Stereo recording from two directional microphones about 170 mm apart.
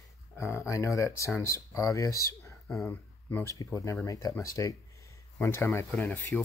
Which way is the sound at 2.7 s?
5° left (ahead or behind).